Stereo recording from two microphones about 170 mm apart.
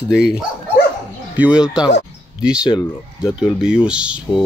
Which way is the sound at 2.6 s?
25° left (ahead or behind).